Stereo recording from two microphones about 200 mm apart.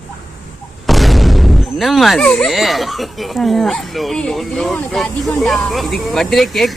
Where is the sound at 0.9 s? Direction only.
Centre (ahead or behind).